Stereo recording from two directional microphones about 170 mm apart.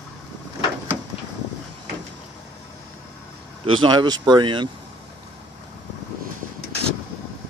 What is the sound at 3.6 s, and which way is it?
Speech, 25° right (ahead or behind).